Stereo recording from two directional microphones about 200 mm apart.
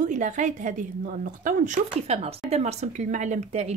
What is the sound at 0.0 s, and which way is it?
Speech, 40° right (ahead or behind).